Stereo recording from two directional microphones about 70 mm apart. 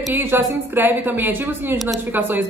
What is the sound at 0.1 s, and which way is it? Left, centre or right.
Speech, right.